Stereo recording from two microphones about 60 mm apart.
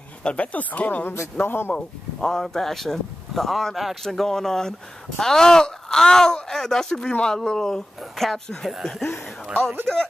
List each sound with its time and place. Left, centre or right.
0.2 s speech: centre
1.4 s speech: left
1.7 s speech: centre
9.0 s speech: left